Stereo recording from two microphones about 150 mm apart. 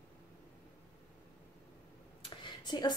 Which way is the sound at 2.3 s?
30° left (ahead or behind).